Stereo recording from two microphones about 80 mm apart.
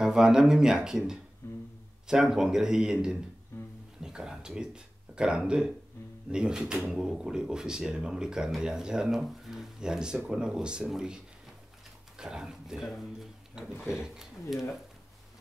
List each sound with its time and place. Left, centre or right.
0.0 s speech: centre
1.4 s a sound: left
2.0 s speech: centre
3.5 s music: left
4.0 s speech: centre
12.2 s speech: centre